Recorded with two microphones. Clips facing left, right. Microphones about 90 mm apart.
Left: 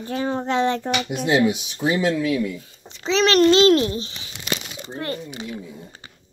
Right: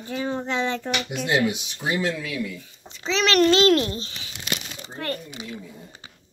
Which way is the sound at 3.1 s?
35° left (ahead or behind).